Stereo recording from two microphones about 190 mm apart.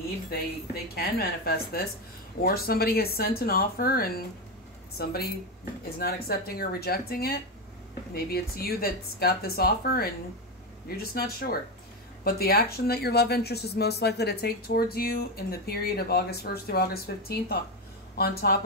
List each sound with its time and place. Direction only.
0.9 s speech: 55° left (ahead or behind)